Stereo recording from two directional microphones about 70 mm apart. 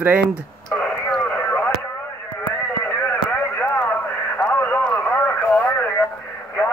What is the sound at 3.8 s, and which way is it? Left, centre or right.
Radio, left.